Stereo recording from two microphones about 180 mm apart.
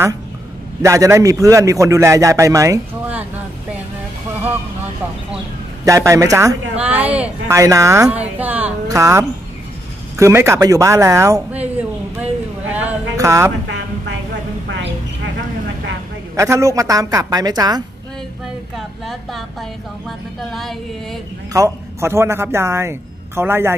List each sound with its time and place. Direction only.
0.8 s a man's voice: 15° right (ahead or behind)
5.9 s a woman's voice: 15° right (ahead or behind)
11.5 s a sound: 10° right (ahead or behind)
16.3 s a woman's voice: 15° right (ahead or behind)
18.8 s a woman's voice: centre (ahead or behind)
21.5 s a man's voice: 15° right (ahead or behind)